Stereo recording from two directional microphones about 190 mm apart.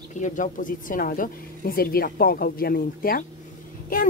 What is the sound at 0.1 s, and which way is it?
Speech, 40° left (ahead or behind).